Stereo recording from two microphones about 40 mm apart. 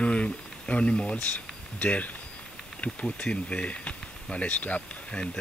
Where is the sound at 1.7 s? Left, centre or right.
Left.